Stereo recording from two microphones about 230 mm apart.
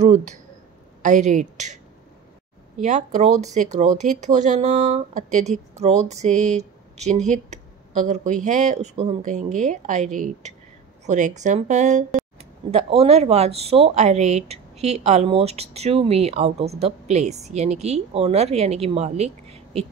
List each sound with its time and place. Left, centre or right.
0.0 s speech: right
2.8 s speech: right